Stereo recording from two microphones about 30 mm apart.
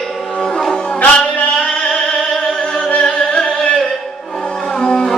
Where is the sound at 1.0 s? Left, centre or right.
Left.